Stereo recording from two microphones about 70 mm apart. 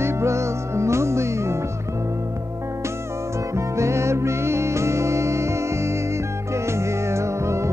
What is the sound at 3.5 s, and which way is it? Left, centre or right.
Music, right.